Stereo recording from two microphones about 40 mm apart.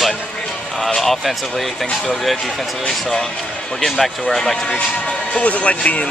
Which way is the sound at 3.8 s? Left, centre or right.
Centre.